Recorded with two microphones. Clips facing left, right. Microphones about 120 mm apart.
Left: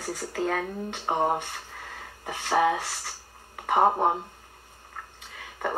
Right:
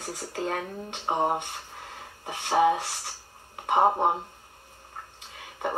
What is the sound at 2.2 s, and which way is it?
Speech, 15° right (ahead or behind).